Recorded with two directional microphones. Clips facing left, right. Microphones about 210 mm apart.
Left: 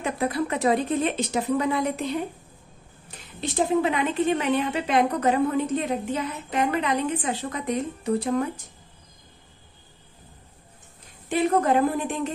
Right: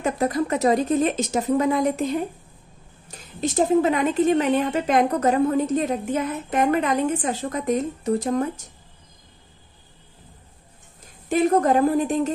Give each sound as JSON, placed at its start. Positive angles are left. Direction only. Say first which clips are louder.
{"t": 0.0, "sound": "a woman's voice", "louder": "right 3 dB", "side_deg": -40}
{"t": 11.2, "sound": "a woman's voice", "louder": "right 3 dB", "side_deg": -45}